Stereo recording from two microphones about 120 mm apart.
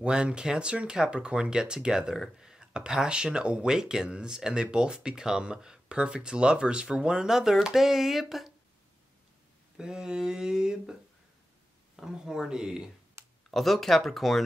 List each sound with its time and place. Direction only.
0.0 s speech: 10° right (ahead or behind)
9.8 s speech: 5° right (ahead or behind)
12.0 s speech: 5° right (ahead or behind)
13.2 s a sound: 20° right (ahead or behind)
13.5 s speech: centre (ahead or behind)